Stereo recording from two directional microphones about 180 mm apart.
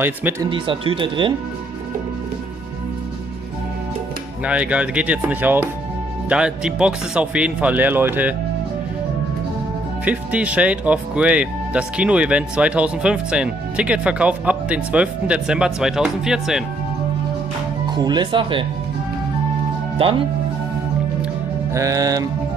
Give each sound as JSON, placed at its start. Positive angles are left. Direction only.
{"t": 0.0, "sound": "speech", "side_deg": -10}
{"t": 0.5, "sound": "speech", "side_deg": -30}
{"t": 4.5, "sound": "speech", "side_deg": -5}
{"t": 10.0, "sound": "speech", "side_deg": -10}
{"t": 17.8, "sound": "speech", "side_deg": -25}
{"t": 20.0, "sound": "speech", "side_deg": -30}
{"t": 21.7, "sound": "speech", "side_deg": -20}